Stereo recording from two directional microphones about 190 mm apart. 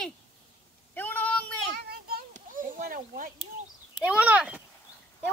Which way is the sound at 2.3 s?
45° right (ahead or behind).